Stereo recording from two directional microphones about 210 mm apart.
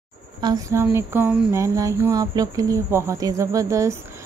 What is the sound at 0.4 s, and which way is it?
A woman's voice, 15° right (ahead or behind).